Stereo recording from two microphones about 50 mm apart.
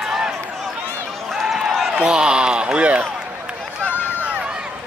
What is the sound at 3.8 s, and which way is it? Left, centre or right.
Run, left.